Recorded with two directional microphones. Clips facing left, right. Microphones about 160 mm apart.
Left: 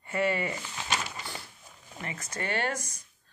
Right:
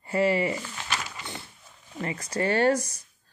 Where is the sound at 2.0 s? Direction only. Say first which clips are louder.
Right 8 dB; 35° right (ahead or behind).